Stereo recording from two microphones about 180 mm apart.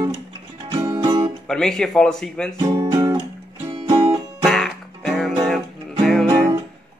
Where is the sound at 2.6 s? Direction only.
20° right (ahead or behind).